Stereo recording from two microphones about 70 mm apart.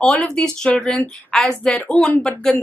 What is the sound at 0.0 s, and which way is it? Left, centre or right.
A woman's voice, centre.